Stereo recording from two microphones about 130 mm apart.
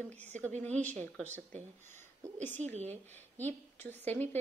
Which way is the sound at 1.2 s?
65° right (ahead or behind).